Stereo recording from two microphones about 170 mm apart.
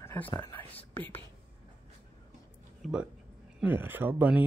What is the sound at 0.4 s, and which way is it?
Speech, 15° left (ahead or behind).